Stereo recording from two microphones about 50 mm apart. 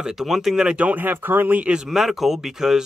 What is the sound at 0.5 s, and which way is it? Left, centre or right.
Speech, centre.